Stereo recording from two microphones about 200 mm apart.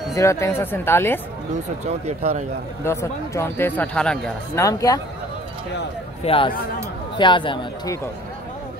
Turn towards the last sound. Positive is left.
turn(degrees=20)  # may be behind; listen again after turning